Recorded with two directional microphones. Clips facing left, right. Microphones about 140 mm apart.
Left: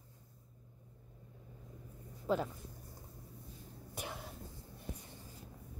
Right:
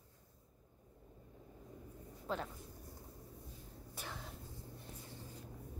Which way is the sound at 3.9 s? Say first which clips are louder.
Left 4 dB; 15° left (ahead or behind).